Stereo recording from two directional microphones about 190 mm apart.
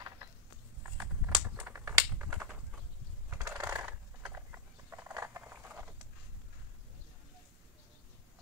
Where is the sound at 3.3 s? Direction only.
15° right (ahead or behind).